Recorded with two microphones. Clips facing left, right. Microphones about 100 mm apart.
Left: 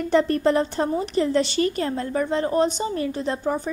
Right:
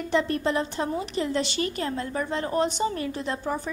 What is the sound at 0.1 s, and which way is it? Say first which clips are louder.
A woman's voice: left 5 dB; 40° left (ahead or behind).